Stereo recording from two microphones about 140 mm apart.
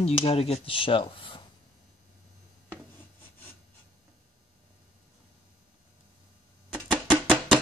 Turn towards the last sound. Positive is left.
turn(degrees=-5)  # may be behind; listen again after turning